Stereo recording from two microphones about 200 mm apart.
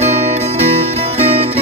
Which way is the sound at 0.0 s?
35° right (ahead or behind).